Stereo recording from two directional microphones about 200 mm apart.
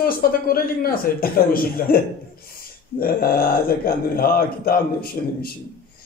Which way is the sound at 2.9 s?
50° left (ahead or behind).